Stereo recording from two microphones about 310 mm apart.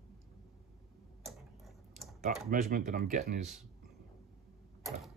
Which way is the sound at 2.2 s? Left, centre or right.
Right.